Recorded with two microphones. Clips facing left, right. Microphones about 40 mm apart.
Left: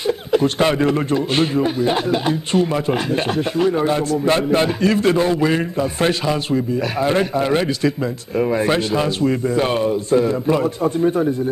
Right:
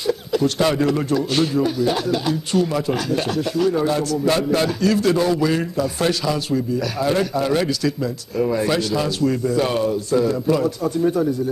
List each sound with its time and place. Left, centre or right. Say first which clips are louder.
0.0 s a man's voice: left 3 dB; left